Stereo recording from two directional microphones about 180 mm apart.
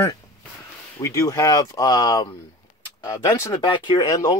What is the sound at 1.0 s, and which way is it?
Speech, 20° left (ahead or behind).